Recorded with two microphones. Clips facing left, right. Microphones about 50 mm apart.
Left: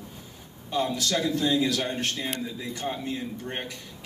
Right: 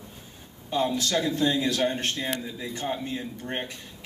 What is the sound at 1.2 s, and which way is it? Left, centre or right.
Speech, right.